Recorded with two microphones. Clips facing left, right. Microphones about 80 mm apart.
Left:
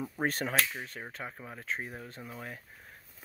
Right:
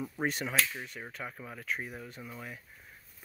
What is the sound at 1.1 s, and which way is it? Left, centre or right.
Speech, left.